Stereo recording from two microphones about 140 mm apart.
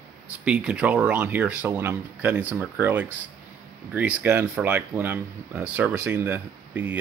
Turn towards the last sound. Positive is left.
turn(degrees=-10)  # may be behind; listen again after turning